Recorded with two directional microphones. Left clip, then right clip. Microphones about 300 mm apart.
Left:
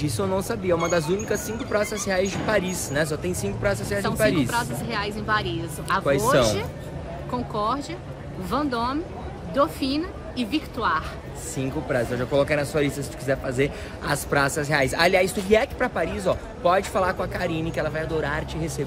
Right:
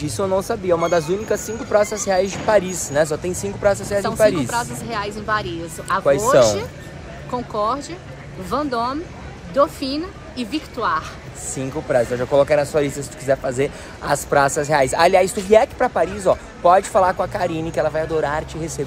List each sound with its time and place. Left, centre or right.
0.0 s speech: centre